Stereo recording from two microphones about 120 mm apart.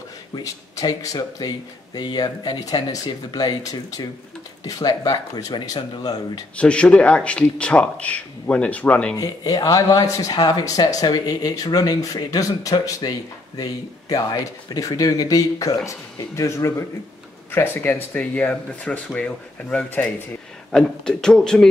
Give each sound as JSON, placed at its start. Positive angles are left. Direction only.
{"t": 0.3, "sound": "speech", "side_deg": 30}
{"t": 6.5, "sound": "speech", "side_deg": 10}
{"t": 9.1, "sound": "speech", "side_deg": 30}